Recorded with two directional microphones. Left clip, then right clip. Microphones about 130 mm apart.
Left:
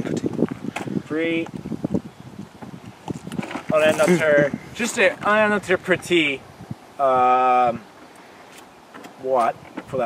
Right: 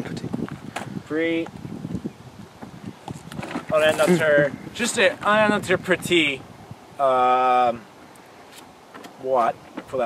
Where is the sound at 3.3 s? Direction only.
5° left (ahead or behind).